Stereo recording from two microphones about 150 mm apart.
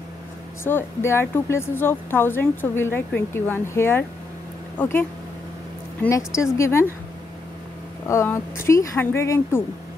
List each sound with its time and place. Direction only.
0.7 s speech: 15° left (ahead or behind)
6.0 s a woman's voice: 20° left (ahead or behind)
8.1 s speech: 15° left (ahead or behind)